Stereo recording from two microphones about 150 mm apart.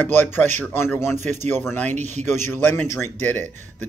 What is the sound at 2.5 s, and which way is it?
Speech, 15° left (ahead or behind).